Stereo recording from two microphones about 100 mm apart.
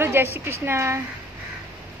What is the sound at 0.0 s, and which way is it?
A woman's voice, 25° right (ahead or behind).